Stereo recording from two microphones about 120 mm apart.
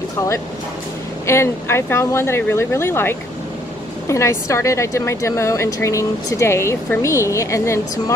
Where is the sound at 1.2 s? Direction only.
20° left (ahead or behind).